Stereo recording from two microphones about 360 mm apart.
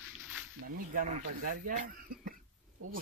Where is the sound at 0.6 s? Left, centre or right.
Right.